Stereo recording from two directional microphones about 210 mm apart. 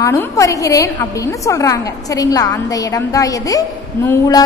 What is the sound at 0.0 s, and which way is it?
A woman's voice, 15° left (ahead or behind).